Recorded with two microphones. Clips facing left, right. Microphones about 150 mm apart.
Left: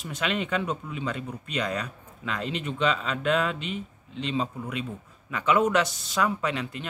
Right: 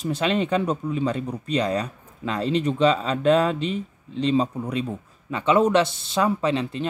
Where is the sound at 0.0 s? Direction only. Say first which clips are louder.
Right 7 dB; 30° right (ahead or behind).